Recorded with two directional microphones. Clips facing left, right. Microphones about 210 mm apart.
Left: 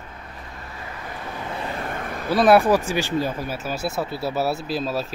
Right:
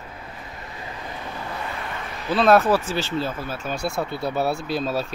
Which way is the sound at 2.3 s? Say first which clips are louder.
Left 1 dB; 10° left (ahead or behind).